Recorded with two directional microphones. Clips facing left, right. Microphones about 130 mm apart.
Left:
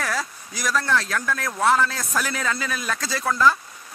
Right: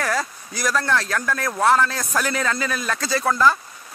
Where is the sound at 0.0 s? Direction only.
Centre (ahead or behind).